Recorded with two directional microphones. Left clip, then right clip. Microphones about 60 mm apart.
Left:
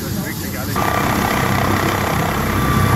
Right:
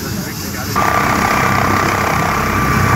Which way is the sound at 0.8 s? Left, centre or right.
Centre.